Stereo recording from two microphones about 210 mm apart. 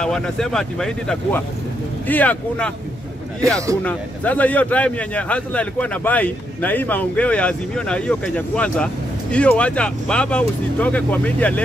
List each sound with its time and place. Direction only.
0.0 s a man's voice: 5° left (ahead or behind)
3.8 s a man's voice: 5° left (ahead or behind)